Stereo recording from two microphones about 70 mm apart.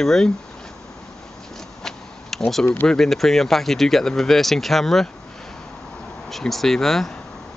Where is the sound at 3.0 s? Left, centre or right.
Centre.